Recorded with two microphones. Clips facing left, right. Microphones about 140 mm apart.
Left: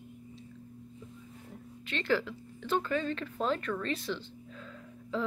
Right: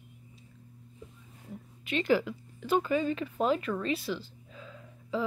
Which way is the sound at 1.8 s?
10° right (ahead or behind).